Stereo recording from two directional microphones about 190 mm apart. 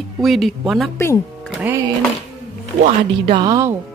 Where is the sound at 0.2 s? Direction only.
Centre (ahead or behind).